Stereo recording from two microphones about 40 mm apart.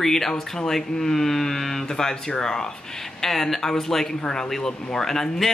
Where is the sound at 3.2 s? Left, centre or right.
Centre.